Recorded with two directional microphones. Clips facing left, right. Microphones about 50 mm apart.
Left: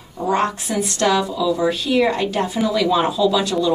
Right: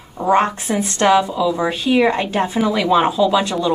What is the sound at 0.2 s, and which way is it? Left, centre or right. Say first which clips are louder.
A woman's voice: right 4 dB; right.